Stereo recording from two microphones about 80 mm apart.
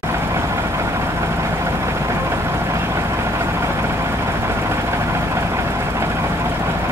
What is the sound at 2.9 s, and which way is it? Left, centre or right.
Vehicle, right.